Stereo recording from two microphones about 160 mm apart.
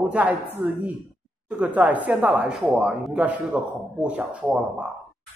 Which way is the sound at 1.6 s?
10° right (ahead or behind).